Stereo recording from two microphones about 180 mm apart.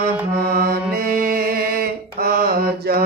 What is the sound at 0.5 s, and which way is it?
Mantra, 55° right (ahead or behind).